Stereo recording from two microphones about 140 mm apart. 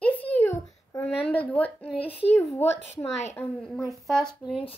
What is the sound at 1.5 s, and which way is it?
Speech, 10° left (ahead or behind).